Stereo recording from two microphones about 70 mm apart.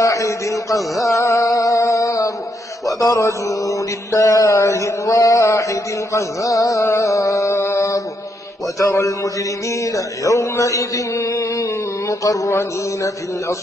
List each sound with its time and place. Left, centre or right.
0.0 s a man's voice: left
1.5 s music: left
3.0 s speech: left
6.8 s a sound: left
7.1 s a sound: left
8.7 s speech: left